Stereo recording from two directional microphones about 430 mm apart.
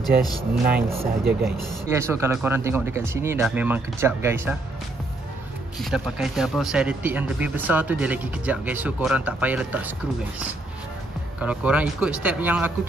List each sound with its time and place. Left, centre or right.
0.0 s speech: centre
0.4 s speech: centre
1.9 s speech: centre
5.8 s speech: centre
11.4 s speech: centre